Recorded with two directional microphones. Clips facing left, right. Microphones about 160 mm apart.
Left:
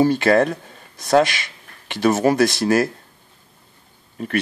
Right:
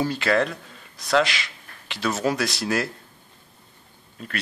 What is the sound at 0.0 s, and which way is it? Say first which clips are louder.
Speech: left 7 dB; 50° left (ahead or behind).